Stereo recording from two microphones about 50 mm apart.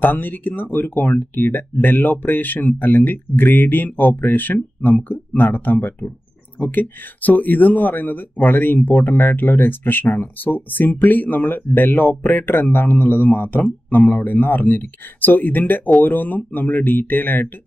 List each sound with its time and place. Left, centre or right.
0.0 s speech: left